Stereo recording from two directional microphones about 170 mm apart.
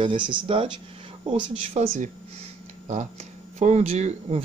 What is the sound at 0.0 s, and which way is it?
Speech, 30° right (ahead or behind).